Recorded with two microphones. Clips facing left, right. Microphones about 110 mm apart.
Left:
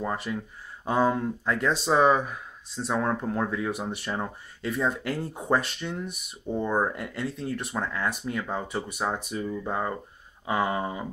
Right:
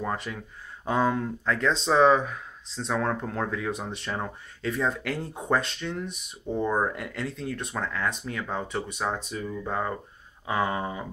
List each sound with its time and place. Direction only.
0.0 s speech: 5° left (ahead or behind)
2.9 s speech: 20° left (ahead or behind)
10.4 s a sound: 5° left (ahead or behind)